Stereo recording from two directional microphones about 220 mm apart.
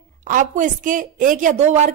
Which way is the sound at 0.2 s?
35° right (ahead or behind).